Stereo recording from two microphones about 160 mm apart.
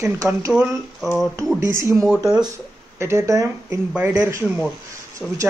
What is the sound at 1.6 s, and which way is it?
Speech, 15° right (ahead or behind).